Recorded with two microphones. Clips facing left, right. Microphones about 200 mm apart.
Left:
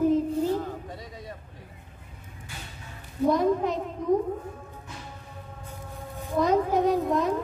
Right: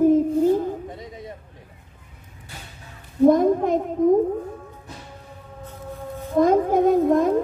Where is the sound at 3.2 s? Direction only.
50° right (ahead or behind).